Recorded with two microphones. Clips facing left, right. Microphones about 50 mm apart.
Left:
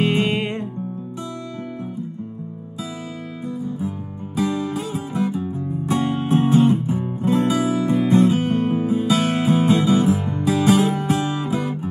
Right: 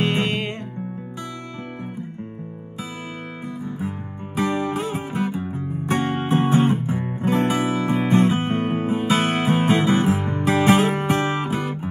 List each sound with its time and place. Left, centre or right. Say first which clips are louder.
0.0 s music: left 2 dB; centre
4.4 s music: even; right